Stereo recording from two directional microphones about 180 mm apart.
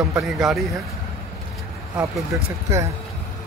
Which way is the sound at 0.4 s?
Centre (ahead or behind).